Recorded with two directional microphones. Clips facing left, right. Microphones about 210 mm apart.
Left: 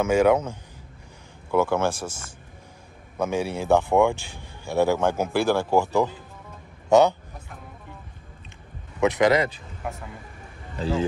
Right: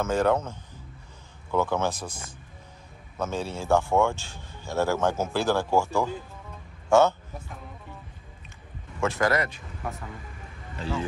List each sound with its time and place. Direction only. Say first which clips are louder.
0.0 s a man's voice: left 5 dB; 10° left (ahead or behind)
3.2 s a man's voice: left 5 dB; 15° left (ahead or behind)
9.0 s speech: left 5 dB; 20° left (ahead or behind)